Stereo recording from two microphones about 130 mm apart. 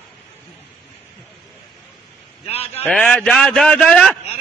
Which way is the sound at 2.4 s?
50° left (ahead or behind).